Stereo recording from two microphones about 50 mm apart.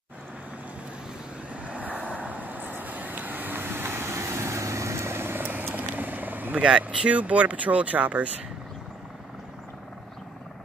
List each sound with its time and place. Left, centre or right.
1.5 s vehicle: right
6.8 s speech: right